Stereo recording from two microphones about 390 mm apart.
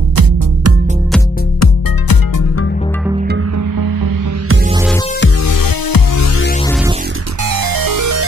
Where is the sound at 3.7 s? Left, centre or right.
Right.